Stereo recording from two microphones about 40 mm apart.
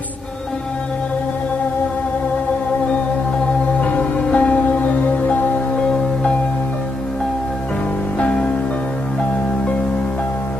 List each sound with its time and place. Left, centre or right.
3.8 s music: left
8.2 s music: left